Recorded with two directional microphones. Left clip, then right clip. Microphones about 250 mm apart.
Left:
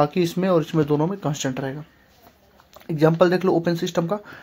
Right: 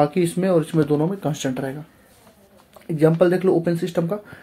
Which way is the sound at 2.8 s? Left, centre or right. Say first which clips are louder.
Right 1 dB; left.